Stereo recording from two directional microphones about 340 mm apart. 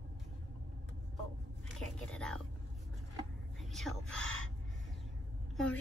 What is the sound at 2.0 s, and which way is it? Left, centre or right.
Whispering, centre.